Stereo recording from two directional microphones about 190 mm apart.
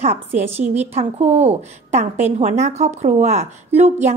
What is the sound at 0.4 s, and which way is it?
A woman's voice, 35° right (ahead or behind).